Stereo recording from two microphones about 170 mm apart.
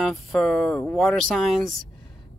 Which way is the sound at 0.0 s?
Centre (ahead or behind).